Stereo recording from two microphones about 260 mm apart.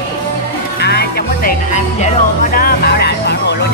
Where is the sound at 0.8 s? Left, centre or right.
Left.